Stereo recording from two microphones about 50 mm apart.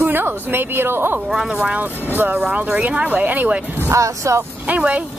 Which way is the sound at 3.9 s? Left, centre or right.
Right.